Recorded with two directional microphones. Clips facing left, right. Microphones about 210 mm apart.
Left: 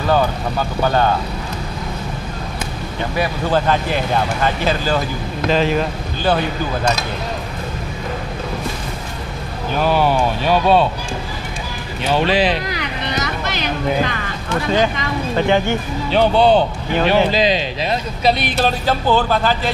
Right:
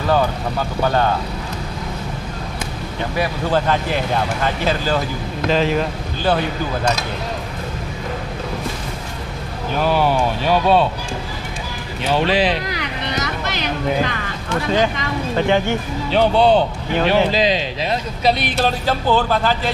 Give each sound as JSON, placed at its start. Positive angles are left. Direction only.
{"t": 0.0, "sound": "speech", "side_deg": 20}
{"t": 3.2, "sound": "speech", "side_deg": 15}
{"t": 9.8, "sound": "speech", "side_deg": 30}
{"t": 10.4, "sound": "speech", "side_deg": 15}
{"t": 12.1, "sound": "speech", "side_deg": 10}